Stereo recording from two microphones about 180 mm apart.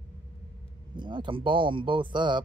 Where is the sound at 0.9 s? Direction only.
25° right (ahead or behind).